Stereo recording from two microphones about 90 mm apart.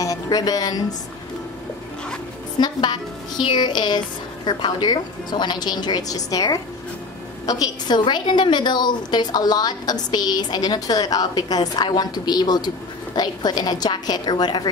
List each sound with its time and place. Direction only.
0.0 s a woman's voice: 40° left (ahead or behind)
2.6 s a woman's voice: 55° left (ahead or behind)
8.0 s a woman's voice: 60° left (ahead or behind)